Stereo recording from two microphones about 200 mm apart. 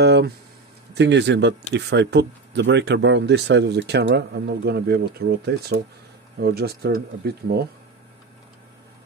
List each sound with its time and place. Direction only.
0.0 s speech: 60° right (ahead or behind)